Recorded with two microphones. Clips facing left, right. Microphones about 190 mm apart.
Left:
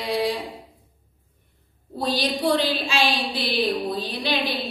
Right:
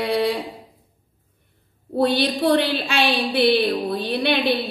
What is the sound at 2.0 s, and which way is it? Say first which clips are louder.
A woman's voice: right 5 dB; 60° right (ahead or behind).